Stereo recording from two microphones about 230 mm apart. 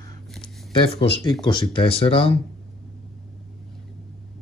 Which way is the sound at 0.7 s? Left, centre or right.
Left.